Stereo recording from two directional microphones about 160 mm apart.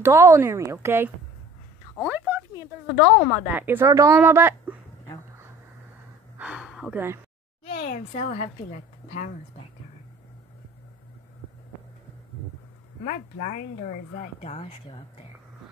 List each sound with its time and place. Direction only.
0.0 s a woman's voice: 20° right (ahead or behind)
6.3 s a sound: 5° right (ahead or behind)
8.1 s a woman's voice: 45° left (ahead or behind)
13.0 s a woman's voice: 50° left (ahead or behind)